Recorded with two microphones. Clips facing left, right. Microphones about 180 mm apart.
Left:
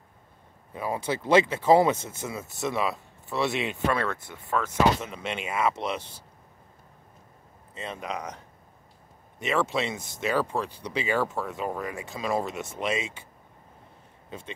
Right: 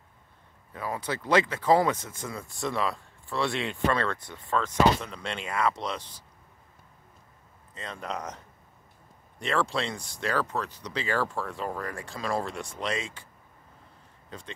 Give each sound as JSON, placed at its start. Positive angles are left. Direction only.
{"t": 0.9, "sound": "speech", "side_deg": 25}
{"t": 5.0, "sound": "speech", "side_deg": 20}
{"t": 7.7, "sound": "speech", "side_deg": 10}
{"t": 9.4, "sound": "speech", "side_deg": 5}
{"t": 9.9, "sound": "speech", "side_deg": 20}
{"t": 10.2, "sound": "speech", "side_deg": 10}
{"t": 12.3, "sound": "speech", "side_deg": 20}
{"t": 12.7, "sound": "speech", "side_deg": 10}